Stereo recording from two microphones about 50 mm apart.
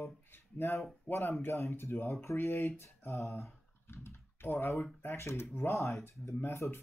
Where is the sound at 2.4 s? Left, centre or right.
Left.